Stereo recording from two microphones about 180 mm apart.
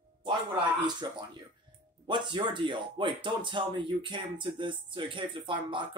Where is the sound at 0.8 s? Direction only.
25° right (ahead or behind).